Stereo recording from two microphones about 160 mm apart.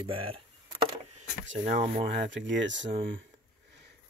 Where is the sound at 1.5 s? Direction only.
50° right (ahead or behind).